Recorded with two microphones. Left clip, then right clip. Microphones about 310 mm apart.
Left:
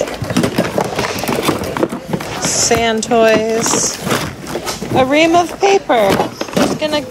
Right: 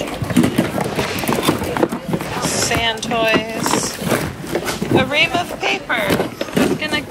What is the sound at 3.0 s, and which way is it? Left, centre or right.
Speech, left.